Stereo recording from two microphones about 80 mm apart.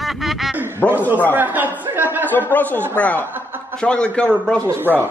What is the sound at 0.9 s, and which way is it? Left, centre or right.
Speech, right.